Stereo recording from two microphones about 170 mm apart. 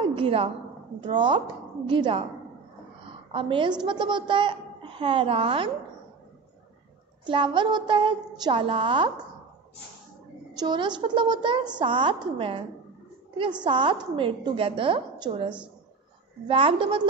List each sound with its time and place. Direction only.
0.0 s a sound: 30° right (ahead or behind)
1.0 s a woman's voice: 30° right (ahead or behind)
3.1 s a sound: 30° right (ahead or behind)
3.8 s a child's voice: 30° right (ahead or behind)
7.2 s a woman's voice: 30° right (ahead or behind)
10.5 s a woman's voice: 25° right (ahead or behind)
13.7 s a woman's voice: 30° right (ahead or behind)